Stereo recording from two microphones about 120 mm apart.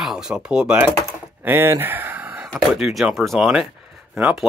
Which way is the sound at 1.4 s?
20° right (ahead or behind).